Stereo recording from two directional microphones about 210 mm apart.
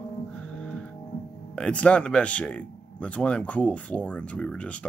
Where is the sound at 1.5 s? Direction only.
5° left (ahead or behind).